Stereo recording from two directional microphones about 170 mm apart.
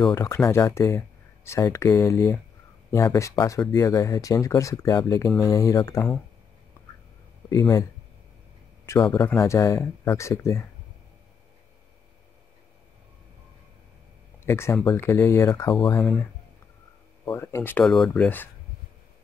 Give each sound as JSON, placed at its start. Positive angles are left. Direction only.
{"t": 0.1, "sound": "speech", "side_deg": 15}
{"t": 7.4, "sound": "speech", "side_deg": 20}
{"t": 8.8, "sound": "speech", "side_deg": 15}
{"t": 14.4, "sound": "speech", "side_deg": 15}
{"t": 17.8, "sound": "speech", "side_deg": 0}